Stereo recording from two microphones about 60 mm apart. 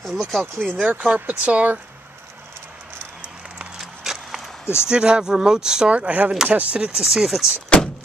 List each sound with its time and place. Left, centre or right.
0.0 s speech: centre
0.7 s speech: centre
3.7 s a sound: centre
4.8 s speech: centre
7.0 s speech: centre